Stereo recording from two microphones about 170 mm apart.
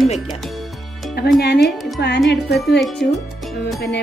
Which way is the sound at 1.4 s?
75° left (ahead or behind).